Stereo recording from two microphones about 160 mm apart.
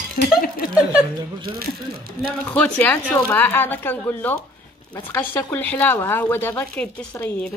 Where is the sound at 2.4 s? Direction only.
10° left (ahead or behind).